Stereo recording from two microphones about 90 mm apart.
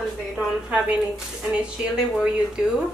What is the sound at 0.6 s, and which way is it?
Speech, 15° right (ahead or behind).